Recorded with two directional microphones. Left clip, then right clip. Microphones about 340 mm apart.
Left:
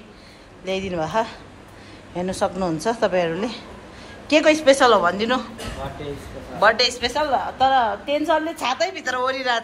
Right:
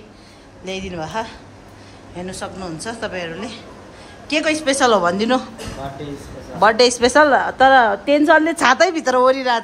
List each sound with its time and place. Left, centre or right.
0.7 s a woman's voice: centre
6.6 s a woman's voice: centre